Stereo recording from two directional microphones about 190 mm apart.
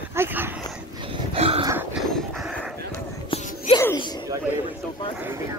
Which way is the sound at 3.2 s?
30° left (ahead or behind).